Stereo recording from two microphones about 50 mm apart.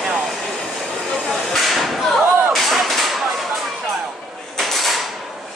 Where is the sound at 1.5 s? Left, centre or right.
Centre.